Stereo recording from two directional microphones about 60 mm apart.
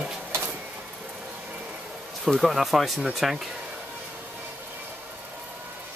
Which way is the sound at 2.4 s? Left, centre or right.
Centre.